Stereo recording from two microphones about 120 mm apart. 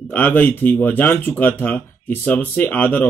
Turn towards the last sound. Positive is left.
turn(degrees=15)  # may be behind; listen again after turning